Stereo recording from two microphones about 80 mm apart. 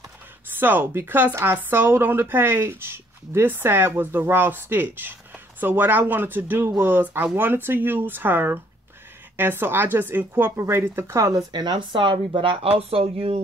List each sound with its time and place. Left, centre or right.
0.5 s speech: right
11.1 s speech: right
11.5 s speech: right